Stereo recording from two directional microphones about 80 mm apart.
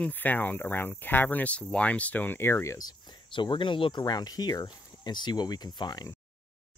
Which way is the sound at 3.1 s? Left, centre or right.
Left.